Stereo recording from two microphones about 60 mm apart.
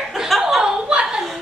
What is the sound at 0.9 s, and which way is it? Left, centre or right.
Chuckle, centre.